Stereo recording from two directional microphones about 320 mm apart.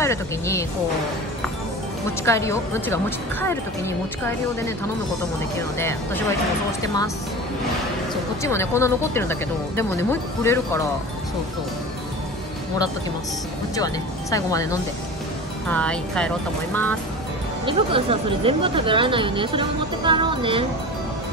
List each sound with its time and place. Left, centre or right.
0.0 s speech: centre
2.2 s speech: centre
5.8 s speech: centre
8.1 s speech: centre
13.7 s speech: centre
17.6 s speech: centre